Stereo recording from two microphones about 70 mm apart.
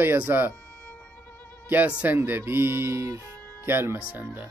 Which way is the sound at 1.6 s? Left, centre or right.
Right.